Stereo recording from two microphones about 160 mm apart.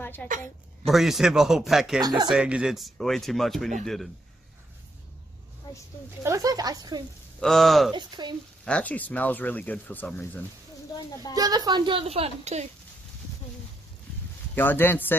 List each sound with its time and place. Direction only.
0.0 s a sound: 10° left (ahead or behind)
0.8 s speech: centre (ahead or behind)
2.0 s speech: 25° right (ahead or behind)
2.2 s speech: 5° right (ahead or behind)
6.2 s speech: 20° right (ahead or behind)
7.3 s speech: centre (ahead or behind)
7.9 s speech: 30° right (ahead or behind)
8.6 s speech: 10° left (ahead or behind)
11.3 s a woman's voice: 25° right (ahead or behind); by 12.6 s 40° right (ahead or behind)
14.5 s speech: 10° left (ahead or behind)